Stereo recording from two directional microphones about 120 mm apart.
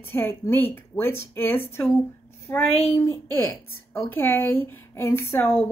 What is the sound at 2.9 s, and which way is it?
A woman's voice, 20° left (ahead or behind).